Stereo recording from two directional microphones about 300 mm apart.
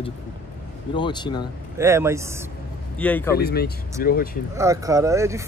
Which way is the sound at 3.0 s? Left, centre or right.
Centre.